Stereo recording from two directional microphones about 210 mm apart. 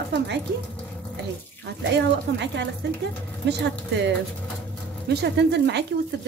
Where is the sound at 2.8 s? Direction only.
55° right (ahead or behind).